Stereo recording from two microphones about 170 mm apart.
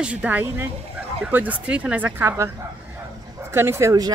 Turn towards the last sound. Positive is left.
turn(degrees=-20)  # may be behind; listen again after turning